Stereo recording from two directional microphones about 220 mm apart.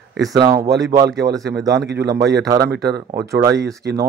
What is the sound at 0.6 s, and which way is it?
Speech, 50° right (ahead or behind).